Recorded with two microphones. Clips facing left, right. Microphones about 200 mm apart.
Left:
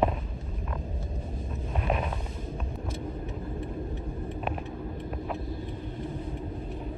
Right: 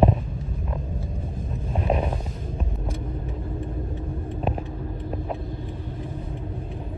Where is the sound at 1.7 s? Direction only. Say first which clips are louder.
Right 5 dB; 30° right (ahead or behind).